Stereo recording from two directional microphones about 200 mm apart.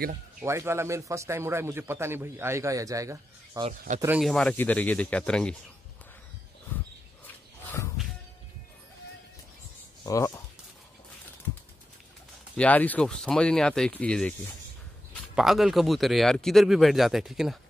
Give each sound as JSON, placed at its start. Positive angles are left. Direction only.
{"t": 0.4, "sound": "a man's voice", "side_deg": -15}
{"t": 4.2, "sound": "speech", "side_deg": 0}
{"t": 7.6, "sound": "music", "side_deg": 15}
{"t": 10.0, "sound": "speech", "side_deg": 15}
{"t": 12.5, "sound": "speech", "side_deg": 10}
{"t": 15.3, "sound": "speech", "side_deg": 0}